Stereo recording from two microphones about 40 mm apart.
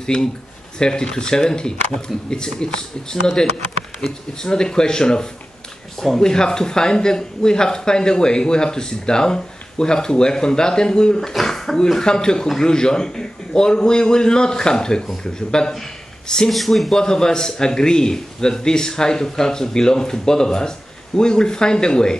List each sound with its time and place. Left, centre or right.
0.0 s a man's voice: centre
11.1 s speech: centre
15.7 s a sound: centre
16.4 s speech: centre
16.9 s a man's voice: centre